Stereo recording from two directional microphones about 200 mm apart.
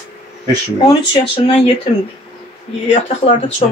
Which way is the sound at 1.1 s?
25° left (ahead or behind).